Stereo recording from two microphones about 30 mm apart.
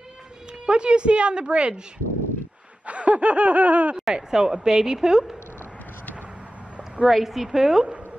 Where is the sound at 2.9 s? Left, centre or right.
Right.